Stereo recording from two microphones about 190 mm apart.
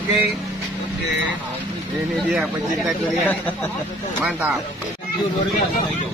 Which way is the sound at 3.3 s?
10° left (ahead or behind).